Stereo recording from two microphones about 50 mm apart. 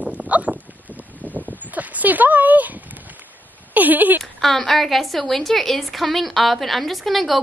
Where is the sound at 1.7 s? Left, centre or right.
Right.